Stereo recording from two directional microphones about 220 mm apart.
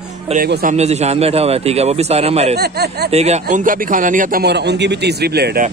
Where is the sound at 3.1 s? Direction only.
30° right (ahead or behind); by 5.7 s 45° right (ahead or behind).